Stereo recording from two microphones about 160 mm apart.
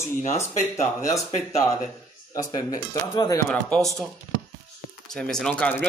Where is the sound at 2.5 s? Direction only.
25° left (ahead or behind).